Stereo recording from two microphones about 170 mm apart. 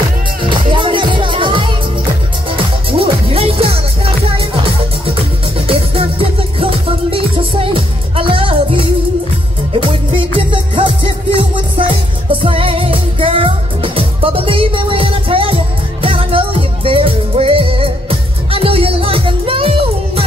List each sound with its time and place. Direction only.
0.4 s music: 30° right (ahead or behind)
5.7 s music: 35° right (ahead or behind)